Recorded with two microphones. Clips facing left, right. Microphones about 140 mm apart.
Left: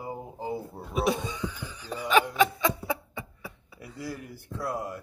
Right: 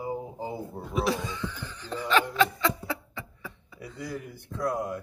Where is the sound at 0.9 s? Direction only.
20° left (ahead or behind).